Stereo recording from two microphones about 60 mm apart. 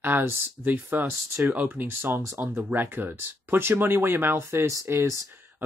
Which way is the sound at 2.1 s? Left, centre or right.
Right.